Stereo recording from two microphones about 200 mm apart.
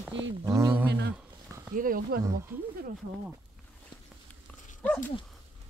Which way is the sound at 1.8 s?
45° right (ahead or behind).